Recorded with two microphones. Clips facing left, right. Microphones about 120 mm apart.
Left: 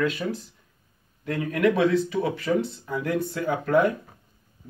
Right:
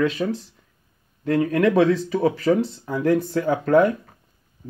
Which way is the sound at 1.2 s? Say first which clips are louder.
Right 4 dB; 35° right (ahead or behind).